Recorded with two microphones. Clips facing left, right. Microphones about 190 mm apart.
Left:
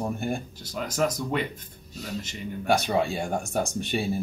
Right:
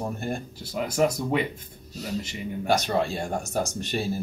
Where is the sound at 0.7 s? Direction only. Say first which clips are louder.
Right 3 dB; 10° right (ahead or behind).